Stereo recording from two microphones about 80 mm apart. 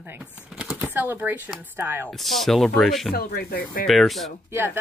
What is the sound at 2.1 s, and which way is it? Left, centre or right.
Speech, centre.